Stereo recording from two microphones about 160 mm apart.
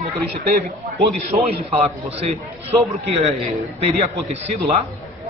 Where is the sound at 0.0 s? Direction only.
40° right (ahead or behind).